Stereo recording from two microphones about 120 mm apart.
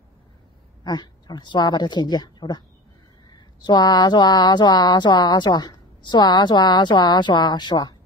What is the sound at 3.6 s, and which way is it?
Speech, 35° left (ahead or behind).